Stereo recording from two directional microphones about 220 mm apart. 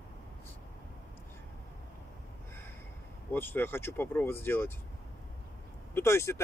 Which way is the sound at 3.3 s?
10° left (ahead or behind).